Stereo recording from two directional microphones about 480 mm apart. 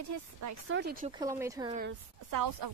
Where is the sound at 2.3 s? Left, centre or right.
Right.